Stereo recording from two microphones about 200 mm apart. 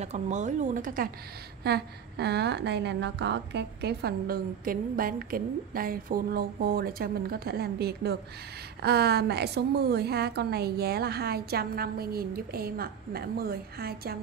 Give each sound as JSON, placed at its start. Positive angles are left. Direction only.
{"t": 0.0, "sound": "speech", "side_deg": -35}
{"t": 1.6, "sound": "a woman's voice", "side_deg": -55}